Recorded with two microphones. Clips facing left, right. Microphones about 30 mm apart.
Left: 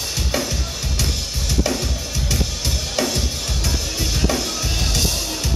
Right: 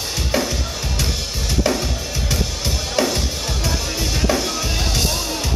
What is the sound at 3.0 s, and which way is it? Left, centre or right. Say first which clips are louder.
Drum kit: right 3 dB; centre.